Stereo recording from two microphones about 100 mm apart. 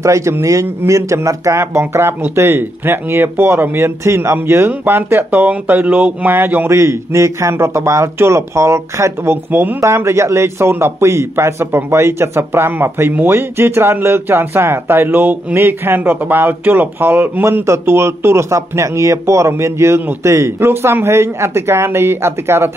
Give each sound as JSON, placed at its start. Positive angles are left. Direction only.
{"t": 0.0, "sound": "a man's voice", "side_deg": -30}